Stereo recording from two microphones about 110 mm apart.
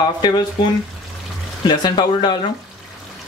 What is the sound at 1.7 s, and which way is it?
Speech, 45° left (ahead or behind).